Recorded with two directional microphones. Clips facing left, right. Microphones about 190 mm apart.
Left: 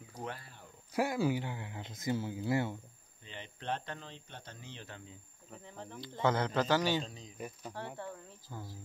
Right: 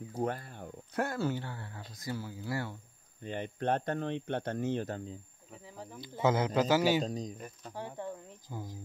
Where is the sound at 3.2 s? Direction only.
50° right (ahead or behind).